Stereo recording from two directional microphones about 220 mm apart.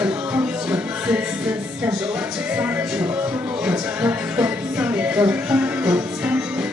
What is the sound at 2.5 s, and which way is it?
Music, 5° right (ahead or behind).